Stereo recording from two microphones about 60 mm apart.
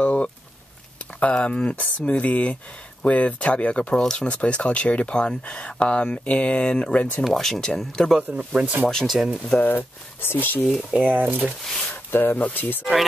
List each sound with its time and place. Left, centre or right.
0.0 s a sound: centre
1.3 s speech: centre
4.0 s speech: centre
4.3 s speech: left
7.2 s speech: centre
8.2 s speech: right
8.8 s speech: centre
9.6 s speech: left
11.0 s speech: right
11.9 s speech: left